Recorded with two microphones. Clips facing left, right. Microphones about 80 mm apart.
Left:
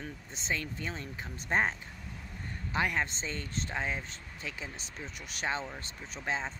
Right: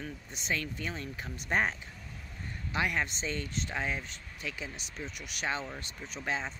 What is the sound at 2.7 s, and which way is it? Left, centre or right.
A man's voice, left.